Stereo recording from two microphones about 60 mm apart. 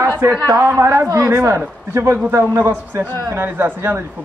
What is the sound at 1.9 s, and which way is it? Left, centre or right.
A man's voice, right.